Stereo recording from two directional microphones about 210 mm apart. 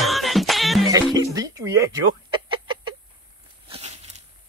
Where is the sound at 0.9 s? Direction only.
15° right (ahead or behind).